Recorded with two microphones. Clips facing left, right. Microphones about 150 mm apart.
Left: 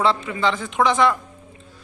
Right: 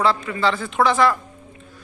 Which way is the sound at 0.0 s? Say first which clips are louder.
Even; 25° left (ahead or behind).